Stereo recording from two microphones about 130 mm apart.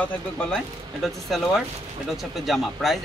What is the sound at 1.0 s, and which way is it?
Speech, centre (ahead or behind).